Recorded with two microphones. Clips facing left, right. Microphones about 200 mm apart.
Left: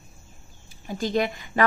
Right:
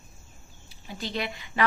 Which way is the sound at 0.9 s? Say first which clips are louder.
Left 8 dB; 45° left (ahead or behind).